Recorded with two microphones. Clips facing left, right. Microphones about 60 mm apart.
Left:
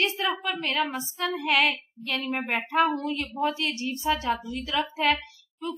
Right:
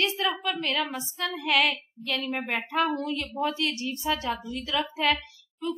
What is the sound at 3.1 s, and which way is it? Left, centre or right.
Speech, left.